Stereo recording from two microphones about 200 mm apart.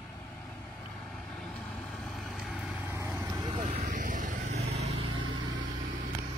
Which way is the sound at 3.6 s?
35° right (ahead or behind).